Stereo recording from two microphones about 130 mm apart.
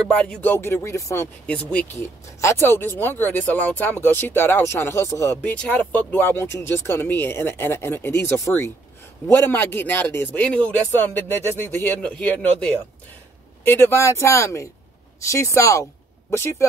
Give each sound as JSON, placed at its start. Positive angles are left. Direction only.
{"t": 0.1, "sound": "speech", "side_deg": 5}
{"t": 1.5, "sound": "speech", "side_deg": 10}